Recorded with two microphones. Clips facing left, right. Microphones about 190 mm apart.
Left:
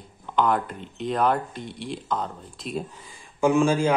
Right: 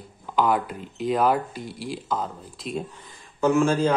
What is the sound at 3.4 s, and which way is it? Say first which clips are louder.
Speech: even; 10° left (ahead or behind).